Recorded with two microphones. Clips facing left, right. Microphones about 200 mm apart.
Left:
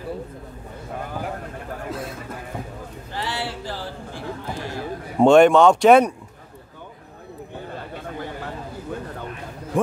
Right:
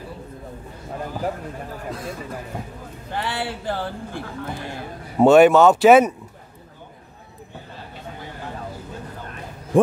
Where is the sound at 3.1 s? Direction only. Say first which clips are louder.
Right 2 dB; 55° right (ahead or behind).